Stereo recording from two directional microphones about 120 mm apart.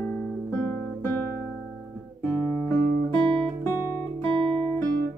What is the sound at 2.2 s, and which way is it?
Music, 20° left (ahead or behind).